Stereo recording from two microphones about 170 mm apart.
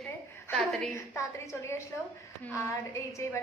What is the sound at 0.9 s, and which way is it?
Speech, 15° left (ahead or behind).